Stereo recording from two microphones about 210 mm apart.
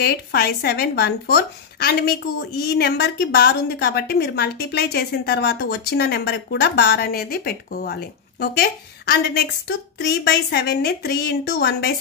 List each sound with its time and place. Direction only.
0.0 s speech: 50° left (ahead or behind)